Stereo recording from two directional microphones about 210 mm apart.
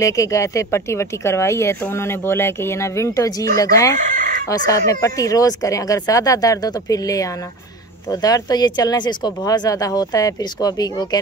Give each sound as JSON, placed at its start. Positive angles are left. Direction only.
{"t": 0.0, "sound": "speech", "side_deg": 15}
{"t": 3.9, "sound": "chicken", "side_deg": -40}
{"t": 4.5, "sound": "speech", "side_deg": 15}